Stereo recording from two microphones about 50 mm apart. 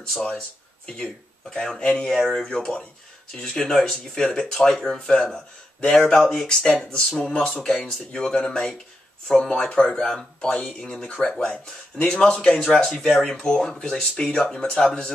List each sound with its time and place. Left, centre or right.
0.1 s speech: centre
1.8 s speech: centre
2.0 s speech: centre